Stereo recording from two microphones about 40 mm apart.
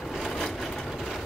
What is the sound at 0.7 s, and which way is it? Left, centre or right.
Vehicle, centre.